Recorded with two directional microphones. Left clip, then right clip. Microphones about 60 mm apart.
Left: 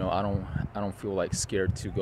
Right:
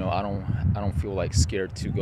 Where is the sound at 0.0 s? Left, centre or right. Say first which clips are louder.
Right 1 dB; centre.